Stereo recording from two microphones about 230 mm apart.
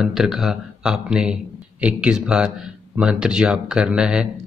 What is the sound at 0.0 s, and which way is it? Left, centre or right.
Speech, centre.